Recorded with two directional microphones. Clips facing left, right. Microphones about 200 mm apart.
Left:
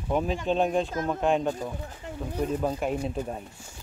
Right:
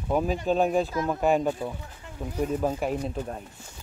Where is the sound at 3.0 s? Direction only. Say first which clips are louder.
Left 1 dB; 10° left (ahead or behind).